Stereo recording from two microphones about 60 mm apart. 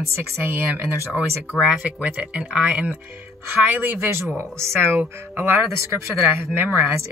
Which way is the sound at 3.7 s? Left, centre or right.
Right.